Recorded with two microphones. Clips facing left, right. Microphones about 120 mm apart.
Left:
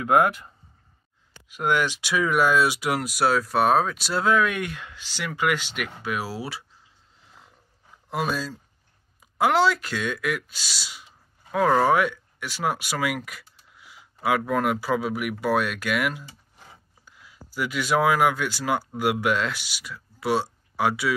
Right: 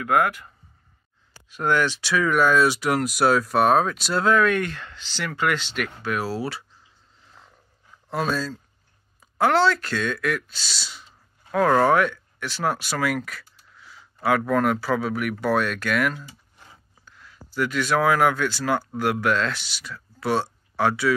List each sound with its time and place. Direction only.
0.0 s speech: 20° left (ahead or behind)
1.5 s speech: 10° left (ahead or behind)
8.1 s speech: 10° left (ahead or behind)